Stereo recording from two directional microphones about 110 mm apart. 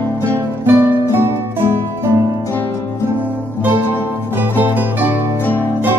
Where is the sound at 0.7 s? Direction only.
20° right (ahead or behind).